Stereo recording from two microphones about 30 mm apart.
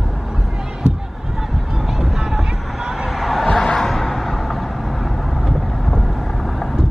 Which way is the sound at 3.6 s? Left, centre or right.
Left.